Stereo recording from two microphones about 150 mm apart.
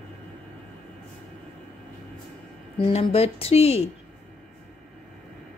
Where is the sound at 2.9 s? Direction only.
45° left (ahead or behind).